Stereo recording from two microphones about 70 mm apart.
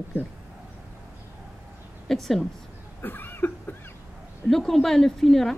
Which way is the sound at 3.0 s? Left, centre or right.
Left.